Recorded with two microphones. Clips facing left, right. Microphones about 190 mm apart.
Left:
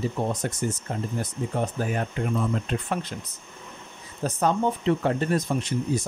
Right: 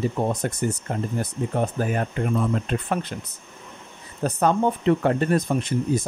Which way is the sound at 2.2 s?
50° right (ahead or behind).